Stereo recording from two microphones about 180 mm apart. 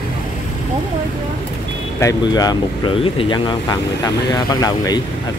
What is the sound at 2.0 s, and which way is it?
Speech, 20° left (ahead or behind).